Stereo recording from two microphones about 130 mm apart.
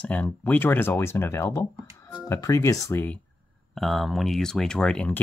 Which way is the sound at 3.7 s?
Centre (ahead or behind).